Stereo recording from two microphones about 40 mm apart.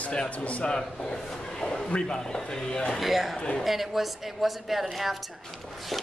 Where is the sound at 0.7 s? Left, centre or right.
Centre.